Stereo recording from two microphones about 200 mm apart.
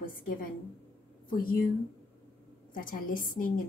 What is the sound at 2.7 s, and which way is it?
Speech, 45° left (ahead or behind).